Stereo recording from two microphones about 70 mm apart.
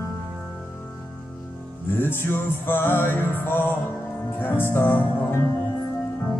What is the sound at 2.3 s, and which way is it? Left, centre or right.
Music, left.